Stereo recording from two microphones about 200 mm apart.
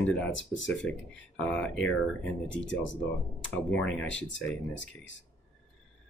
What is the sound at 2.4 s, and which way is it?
Speech, 70° left (ahead or behind).